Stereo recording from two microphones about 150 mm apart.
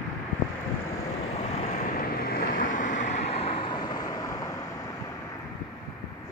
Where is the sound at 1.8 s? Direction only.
70° left (ahead or behind); by 4.9 s 25° left (ahead or behind).